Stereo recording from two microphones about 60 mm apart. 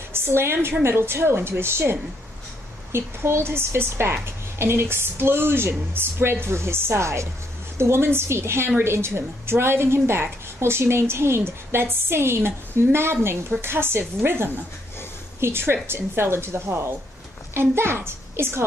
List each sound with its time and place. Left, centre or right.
0.1 s a woman's voice: right